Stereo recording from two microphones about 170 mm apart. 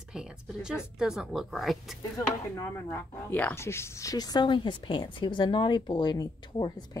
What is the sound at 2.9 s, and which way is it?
A woman's voice, 10° left (ahead or behind).